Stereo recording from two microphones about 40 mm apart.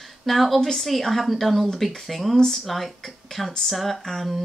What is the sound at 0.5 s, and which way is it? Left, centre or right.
Speech, centre.